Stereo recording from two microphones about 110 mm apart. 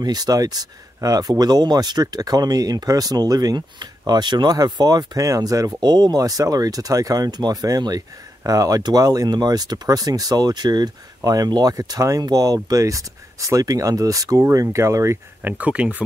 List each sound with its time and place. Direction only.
0.0 s speech: 35° right (ahead or behind)
15.4 s speech: 15° right (ahead or behind)